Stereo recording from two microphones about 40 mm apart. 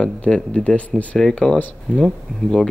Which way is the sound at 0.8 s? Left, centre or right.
Left.